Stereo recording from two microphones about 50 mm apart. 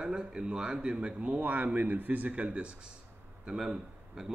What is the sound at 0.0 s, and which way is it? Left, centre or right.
Speech, centre.